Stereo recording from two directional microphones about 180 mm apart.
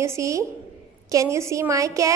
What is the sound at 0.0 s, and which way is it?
A woman's voice, 15° right (ahead or behind).